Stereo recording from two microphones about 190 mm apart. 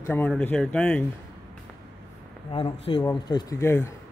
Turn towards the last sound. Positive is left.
turn(degrees=15)  # may be behind; listen again after turning